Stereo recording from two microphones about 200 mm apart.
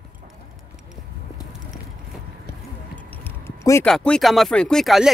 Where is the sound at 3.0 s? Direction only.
10° left (ahead or behind).